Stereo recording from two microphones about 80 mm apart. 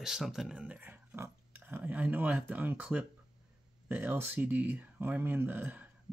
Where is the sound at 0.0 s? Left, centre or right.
Centre.